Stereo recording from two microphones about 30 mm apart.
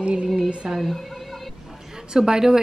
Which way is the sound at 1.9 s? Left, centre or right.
Right.